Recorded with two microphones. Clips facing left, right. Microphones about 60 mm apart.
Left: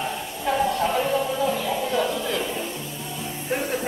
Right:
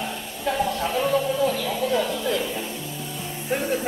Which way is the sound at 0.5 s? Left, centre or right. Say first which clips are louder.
Left 2 dB; left.